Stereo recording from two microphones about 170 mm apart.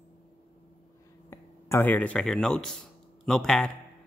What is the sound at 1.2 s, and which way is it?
Speech, 15° left (ahead or behind).